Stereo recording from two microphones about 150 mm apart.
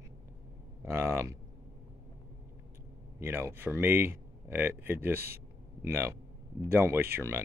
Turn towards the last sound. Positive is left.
turn(degrees=-15)  # may be behind; listen again after turning